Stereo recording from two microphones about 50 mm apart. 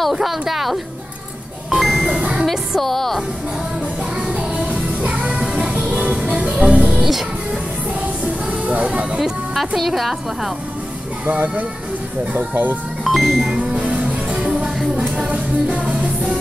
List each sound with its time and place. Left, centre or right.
0.1 s music: centre
1.7 s a sound: centre
2.0 s music: centre
2.4 s music: centre
4.3 s music: right
7.0 s music: centre
8.5 s vehicle: right
8.8 s speech: centre
9.8 s music: centre
11.2 s speech: right
13.0 s music: centre
13.6 s music: right